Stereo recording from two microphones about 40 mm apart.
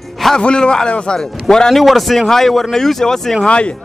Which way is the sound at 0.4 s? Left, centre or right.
Left.